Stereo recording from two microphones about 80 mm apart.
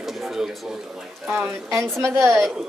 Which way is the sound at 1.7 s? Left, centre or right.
Right.